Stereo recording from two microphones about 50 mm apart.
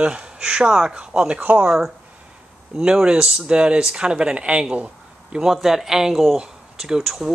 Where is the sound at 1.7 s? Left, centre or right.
Centre; by 5.4 s right.